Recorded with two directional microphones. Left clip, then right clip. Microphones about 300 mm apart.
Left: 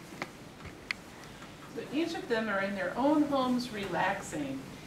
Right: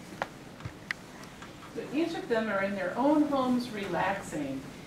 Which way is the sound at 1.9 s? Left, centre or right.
Centre.